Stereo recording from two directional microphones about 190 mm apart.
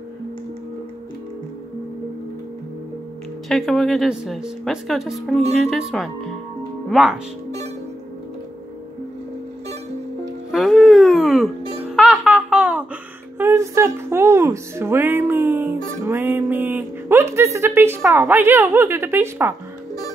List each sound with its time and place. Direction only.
3.4 s speech: centre (ahead or behind)
10.5 s a sound: centre (ahead or behind)
11.9 s music: centre (ahead or behind)